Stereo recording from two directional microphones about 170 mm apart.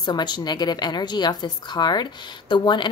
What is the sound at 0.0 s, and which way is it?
Speech, 25° left (ahead or behind).